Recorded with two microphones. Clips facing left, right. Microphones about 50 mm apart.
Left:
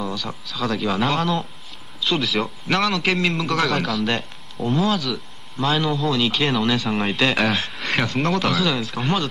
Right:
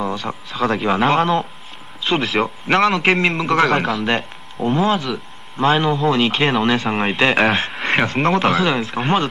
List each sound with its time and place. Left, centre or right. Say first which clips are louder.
0.0 s a man's voice: right 5 dB; right